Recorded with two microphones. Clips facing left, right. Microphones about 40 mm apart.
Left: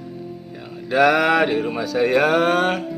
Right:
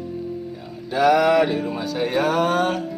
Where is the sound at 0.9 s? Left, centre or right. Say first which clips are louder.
Left 1 dB; left.